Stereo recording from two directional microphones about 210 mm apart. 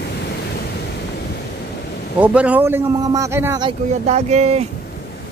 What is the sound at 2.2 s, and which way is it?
A man's voice, 5° right (ahead or behind).